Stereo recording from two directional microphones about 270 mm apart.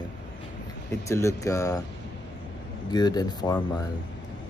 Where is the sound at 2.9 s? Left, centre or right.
Centre.